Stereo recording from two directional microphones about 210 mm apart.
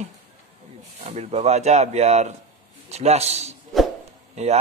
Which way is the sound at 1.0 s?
30° right (ahead or behind).